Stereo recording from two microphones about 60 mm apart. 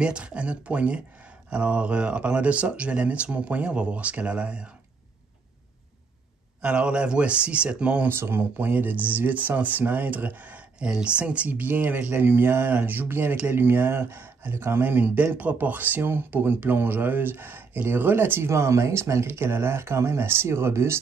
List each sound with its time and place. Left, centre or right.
0.0 s speech: centre
6.6 s speech: centre
8.1 s speech: right
11.6 s speech: right
18.5 s speech: right